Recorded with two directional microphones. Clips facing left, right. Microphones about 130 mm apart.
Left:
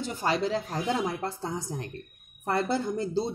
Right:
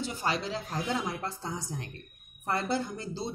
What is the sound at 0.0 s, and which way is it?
Speech, 50° left (ahead or behind).